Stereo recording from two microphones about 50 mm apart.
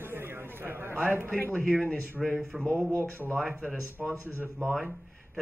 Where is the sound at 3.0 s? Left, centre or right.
Right.